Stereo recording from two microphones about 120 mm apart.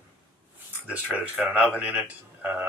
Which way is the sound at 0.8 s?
10° right (ahead or behind).